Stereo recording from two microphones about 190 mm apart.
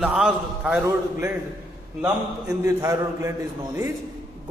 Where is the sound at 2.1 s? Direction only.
15° right (ahead or behind).